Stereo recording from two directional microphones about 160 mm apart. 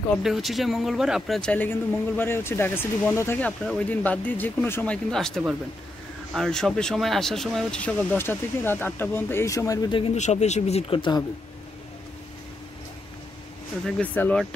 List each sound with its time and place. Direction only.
0.2 s speech: centre (ahead or behind); by 10.1 s 30° left (ahead or behind)
10.1 s speech: 45° left (ahead or behind); by 11.2 s 30° left (ahead or behind)
13.8 s speech: 5° left (ahead or behind)